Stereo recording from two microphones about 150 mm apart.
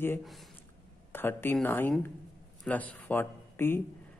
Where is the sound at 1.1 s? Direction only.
15° left (ahead or behind).